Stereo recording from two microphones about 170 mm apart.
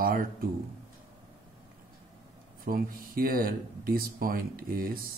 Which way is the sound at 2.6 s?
55° right (ahead or behind).